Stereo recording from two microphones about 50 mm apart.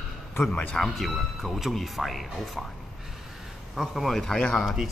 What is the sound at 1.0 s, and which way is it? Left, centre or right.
Speech, centre.